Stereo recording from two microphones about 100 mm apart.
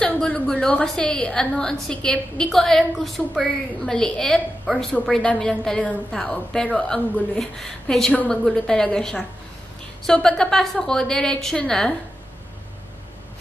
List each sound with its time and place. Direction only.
0.0 s a woman's voice: 10° left (ahead or behind)